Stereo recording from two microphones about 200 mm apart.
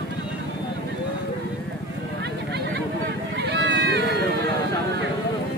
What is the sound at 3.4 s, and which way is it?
Run, 60° right (ahead or behind).